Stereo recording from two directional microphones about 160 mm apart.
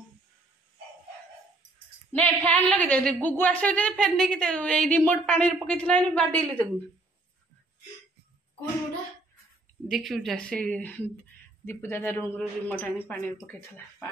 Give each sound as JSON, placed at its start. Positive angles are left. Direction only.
{"t": 2.1, "sound": "a woman's voice", "side_deg": 10}
{"t": 9.8, "sound": "a woman's voice", "side_deg": 0}